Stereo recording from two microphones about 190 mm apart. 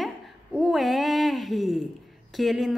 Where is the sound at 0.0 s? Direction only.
Centre (ahead or behind).